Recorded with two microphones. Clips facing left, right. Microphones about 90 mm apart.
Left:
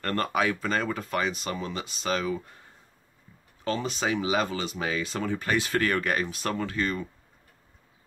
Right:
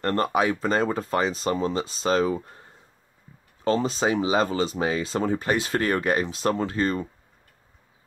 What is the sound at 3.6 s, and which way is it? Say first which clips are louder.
Speech: right 6 dB; 30° right (ahead or behind).